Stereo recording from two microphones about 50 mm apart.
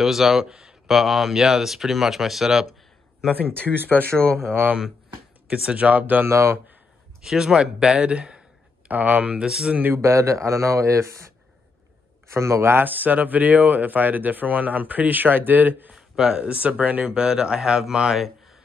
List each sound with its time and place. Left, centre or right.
0.0 s speech: centre
0.8 s speech: centre
3.4 s speech: right
4.2 s speech: right
5.7 s speech: right
6.2 s speech: right
7.2 s speech: centre
8.8 s speech: right
9.5 s speech: centre
10.0 s speech: right
12.7 s speech: right
15.9 s speech: centre
16.5 s speech: right
17.2 s speech: centre